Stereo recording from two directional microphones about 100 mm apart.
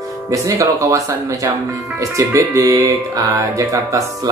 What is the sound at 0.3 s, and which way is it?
Speech, 35° right (ahead or behind).